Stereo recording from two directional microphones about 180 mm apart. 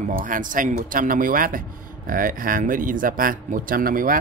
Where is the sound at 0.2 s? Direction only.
50° right (ahead or behind).